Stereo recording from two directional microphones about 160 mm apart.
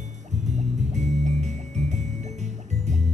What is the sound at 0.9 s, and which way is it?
Music, 45° right (ahead or behind).